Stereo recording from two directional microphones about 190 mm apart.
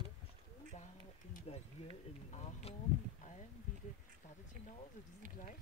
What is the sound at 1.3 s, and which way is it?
Speech, 35° left (ahead or behind).